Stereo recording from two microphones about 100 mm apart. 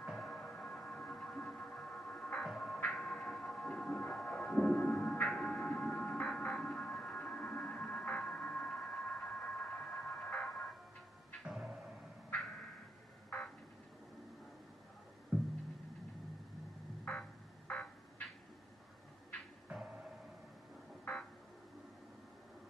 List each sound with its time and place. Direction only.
0.0 s music: centre (ahead or behind)
2.4 s music: centre (ahead or behind)
11.4 s music: 5° right (ahead or behind)
15.3 s music: 15° right (ahead or behind)
17.0 s music: 10° left (ahead or behind)
19.7 s a sound: 10° right (ahead or behind)
21.0 s a sound: 5° left (ahead or behind)